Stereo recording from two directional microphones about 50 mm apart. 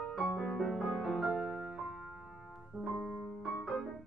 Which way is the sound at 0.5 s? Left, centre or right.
Centre.